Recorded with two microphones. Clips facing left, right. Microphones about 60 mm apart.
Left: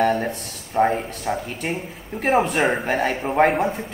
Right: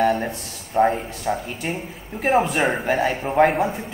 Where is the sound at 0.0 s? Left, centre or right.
Centre.